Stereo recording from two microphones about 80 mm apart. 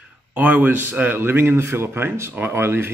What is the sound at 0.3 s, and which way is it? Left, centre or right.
A man's voice, right.